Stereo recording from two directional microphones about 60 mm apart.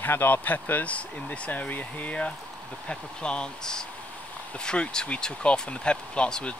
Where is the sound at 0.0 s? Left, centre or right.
Left.